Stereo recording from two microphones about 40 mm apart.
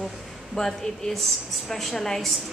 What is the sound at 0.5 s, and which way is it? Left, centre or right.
A woman's voice, centre.